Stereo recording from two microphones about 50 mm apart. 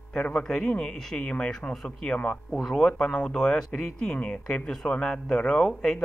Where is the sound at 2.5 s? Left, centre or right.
Centre.